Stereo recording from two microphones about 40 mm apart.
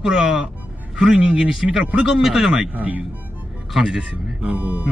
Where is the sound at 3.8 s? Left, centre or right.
Centre.